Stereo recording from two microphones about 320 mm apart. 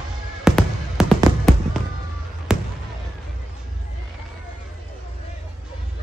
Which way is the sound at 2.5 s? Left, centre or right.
Centre.